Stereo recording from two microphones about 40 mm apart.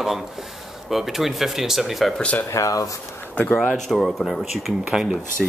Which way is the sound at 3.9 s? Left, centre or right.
Centre.